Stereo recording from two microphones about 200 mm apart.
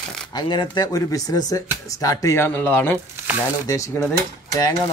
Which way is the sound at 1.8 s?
15° left (ahead or behind).